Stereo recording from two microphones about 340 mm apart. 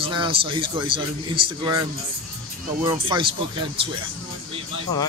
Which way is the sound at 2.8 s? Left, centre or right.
Centre.